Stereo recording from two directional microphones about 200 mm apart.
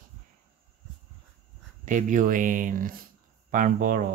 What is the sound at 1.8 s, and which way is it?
Speech, 40° right (ahead or behind).